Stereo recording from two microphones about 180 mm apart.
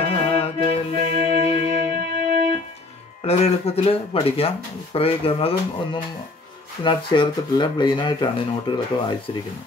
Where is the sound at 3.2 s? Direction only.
35° left (ahead or behind).